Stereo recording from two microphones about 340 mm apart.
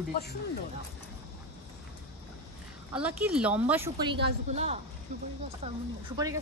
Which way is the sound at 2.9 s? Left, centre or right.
Centre.